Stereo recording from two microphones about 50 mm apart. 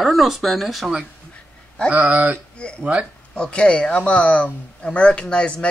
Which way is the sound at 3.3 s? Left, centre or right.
Centre.